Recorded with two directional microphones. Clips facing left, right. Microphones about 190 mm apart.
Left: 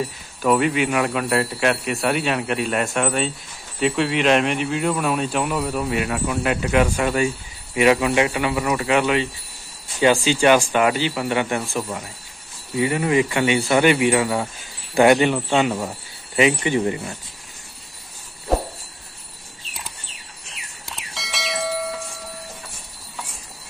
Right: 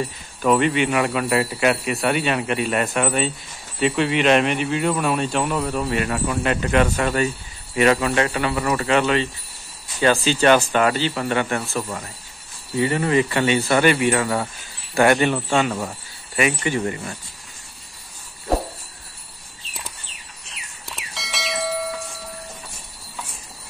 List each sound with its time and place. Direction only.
0.0 s speech: 5° left (ahead or behind)
18.5 s a sound: centre (ahead or behind)
21.1 s bell: centre (ahead or behind)